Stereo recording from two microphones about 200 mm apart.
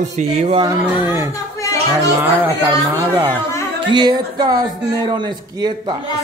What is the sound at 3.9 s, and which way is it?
Speech, 20° right (ahead or behind).